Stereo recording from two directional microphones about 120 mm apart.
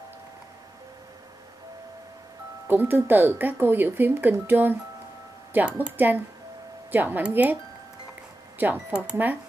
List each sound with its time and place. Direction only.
2.7 s speech: 15° right (ahead or behind)
8.5 s speech: 15° right (ahead or behind)